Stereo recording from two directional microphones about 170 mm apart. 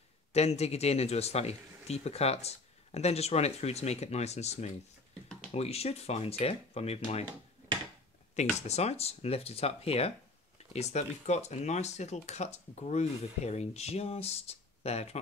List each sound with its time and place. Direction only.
0.3 s speech: 40° left (ahead or behind)
8.5 s speech: 40° left (ahead or behind)